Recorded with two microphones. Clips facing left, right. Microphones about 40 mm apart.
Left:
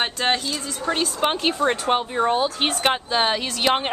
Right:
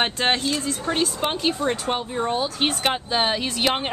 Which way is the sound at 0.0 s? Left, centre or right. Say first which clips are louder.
Right 1 dB; centre.